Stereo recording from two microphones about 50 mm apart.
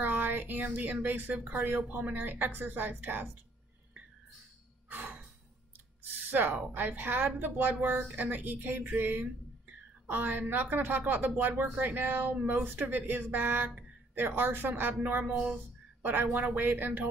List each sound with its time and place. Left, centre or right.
0.0 s speech: right
4.8 s a sound: right
6.3 s speech: right
8.8 s a woman's voice: right